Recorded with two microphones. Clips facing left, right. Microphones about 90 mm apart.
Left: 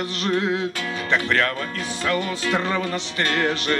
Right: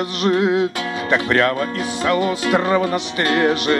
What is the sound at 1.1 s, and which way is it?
Speech, 25° right (ahead or behind).